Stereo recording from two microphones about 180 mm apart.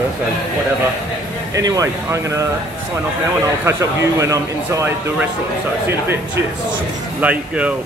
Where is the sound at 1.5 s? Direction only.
20° right (ahead or behind).